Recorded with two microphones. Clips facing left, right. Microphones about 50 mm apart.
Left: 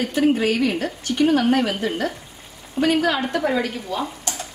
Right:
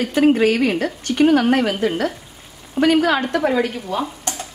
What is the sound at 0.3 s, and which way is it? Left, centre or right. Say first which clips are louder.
A woman's voice: right 4 dB; right.